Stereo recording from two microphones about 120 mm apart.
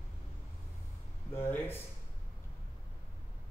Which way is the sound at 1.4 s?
20° left (ahead or behind).